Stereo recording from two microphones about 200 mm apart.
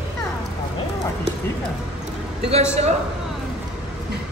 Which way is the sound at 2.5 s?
30° right (ahead or behind).